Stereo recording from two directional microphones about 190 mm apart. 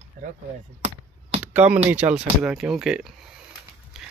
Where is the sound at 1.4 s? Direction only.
5° right (ahead or behind).